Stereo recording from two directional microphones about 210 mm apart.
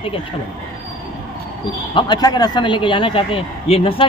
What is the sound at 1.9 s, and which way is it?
A man's voice, 20° left (ahead or behind).